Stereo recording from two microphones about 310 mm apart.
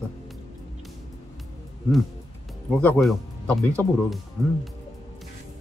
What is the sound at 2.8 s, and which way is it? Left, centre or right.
Speech, centre.